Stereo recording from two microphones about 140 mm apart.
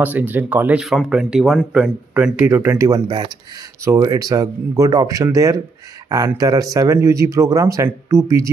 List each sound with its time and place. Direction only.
0.0 s speech: 10° right (ahead or behind)